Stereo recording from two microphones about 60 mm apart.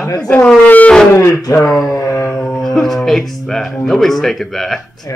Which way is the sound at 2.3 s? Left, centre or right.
Centre.